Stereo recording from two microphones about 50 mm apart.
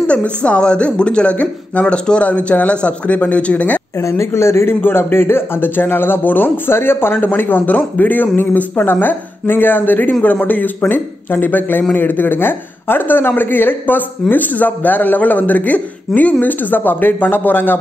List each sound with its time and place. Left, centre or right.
0.0 s speech: left
4.0 s a man's voice: left